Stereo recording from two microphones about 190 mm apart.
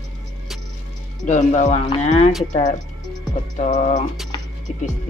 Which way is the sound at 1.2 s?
40° left (ahead or behind).